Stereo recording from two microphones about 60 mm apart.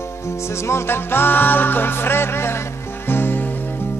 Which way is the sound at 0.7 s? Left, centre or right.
Left.